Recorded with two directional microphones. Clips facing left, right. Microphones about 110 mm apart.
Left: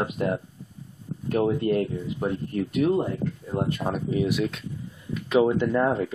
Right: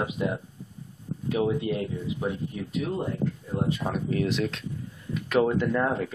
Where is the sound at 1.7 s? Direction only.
55° left (ahead or behind).